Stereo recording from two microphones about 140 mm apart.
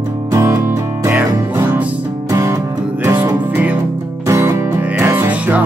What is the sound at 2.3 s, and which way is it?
Music, 25° right (ahead or behind).